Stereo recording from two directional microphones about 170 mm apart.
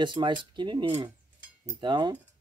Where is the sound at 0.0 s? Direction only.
25° right (ahead or behind).